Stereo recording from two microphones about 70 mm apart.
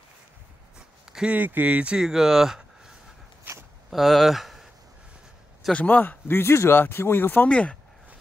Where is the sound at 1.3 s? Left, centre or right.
Right.